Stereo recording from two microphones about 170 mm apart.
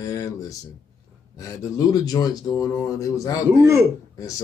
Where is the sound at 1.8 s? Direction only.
20° left (ahead or behind).